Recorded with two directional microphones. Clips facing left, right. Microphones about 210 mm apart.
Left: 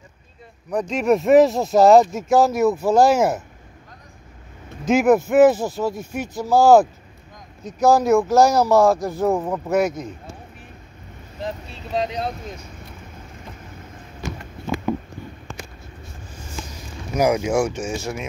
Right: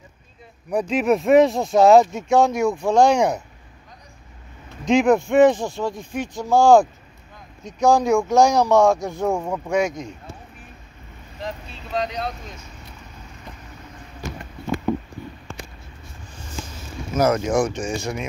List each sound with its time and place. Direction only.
0.7 s speech: 5° right (ahead or behind)
4.8 s speech: 5° left (ahead or behind)
11.4 s boat: 25° left (ahead or behind)
17.1 s speech: 10° left (ahead or behind)